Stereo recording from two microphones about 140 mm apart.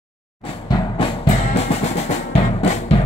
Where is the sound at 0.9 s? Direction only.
40° left (ahead or behind).